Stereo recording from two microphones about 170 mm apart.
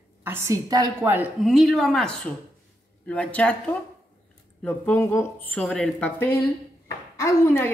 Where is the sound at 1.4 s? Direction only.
Centre (ahead or behind).